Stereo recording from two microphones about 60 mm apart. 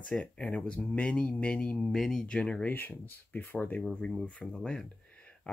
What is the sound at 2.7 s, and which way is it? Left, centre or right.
Speech, left.